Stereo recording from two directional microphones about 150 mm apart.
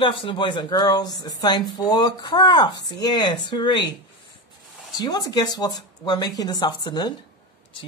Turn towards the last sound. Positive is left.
turn(degrees=30)  # may be behind; listen again after turning